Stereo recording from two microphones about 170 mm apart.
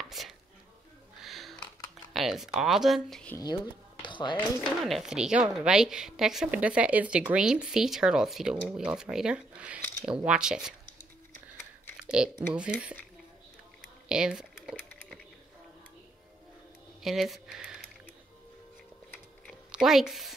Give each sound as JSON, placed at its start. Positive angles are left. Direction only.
{"t": 0.0, "sound": "music", "side_deg": 0}
{"t": 1.2, "sound": "a sound", "side_deg": 0}
{"t": 2.1, "sound": "speech", "side_deg": 0}
{"t": 3.3, "sound": "speech", "side_deg": 25}
{"t": 4.8, "sound": "a woman's voice", "side_deg": 0}
{"t": 12.0, "sound": "a sound", "side_deg": -5}
{"t": 14.0, "sound": "a sound", "side_deg": -5}
{"t": 17.0, "sound": "speech", "side_deg": 0}
{"t": 19.7, "sound": "a woman's voice", "side_deg": -5}